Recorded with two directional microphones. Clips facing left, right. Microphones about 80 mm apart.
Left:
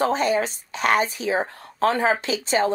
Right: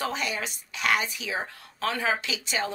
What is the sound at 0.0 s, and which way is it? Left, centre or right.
A woman's voice, left.